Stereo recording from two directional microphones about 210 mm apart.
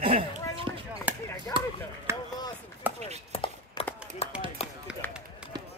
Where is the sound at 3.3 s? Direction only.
25° left (ahead or behind).